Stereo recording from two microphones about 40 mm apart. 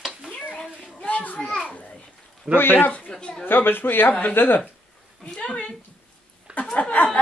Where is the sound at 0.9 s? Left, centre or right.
Left.